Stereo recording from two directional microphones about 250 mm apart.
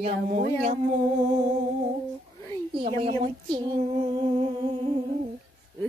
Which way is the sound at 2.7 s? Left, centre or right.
Right.